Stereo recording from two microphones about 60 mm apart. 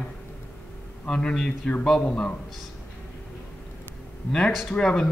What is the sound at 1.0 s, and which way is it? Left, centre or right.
Speech, centre.